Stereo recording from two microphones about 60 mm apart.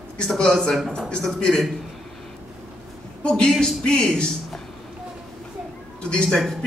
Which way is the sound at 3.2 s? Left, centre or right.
Centre.